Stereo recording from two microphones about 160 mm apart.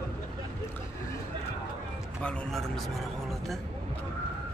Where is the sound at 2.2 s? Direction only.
5° left (ahead or behind).